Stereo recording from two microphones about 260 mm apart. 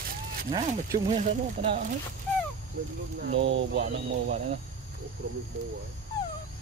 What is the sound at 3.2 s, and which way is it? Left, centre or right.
Speech, right.